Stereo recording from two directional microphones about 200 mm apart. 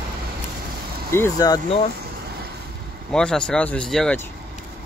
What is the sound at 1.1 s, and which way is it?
Speech, 15° left (ahead or behind).